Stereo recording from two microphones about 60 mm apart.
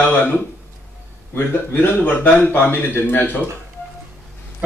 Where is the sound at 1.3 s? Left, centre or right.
Left.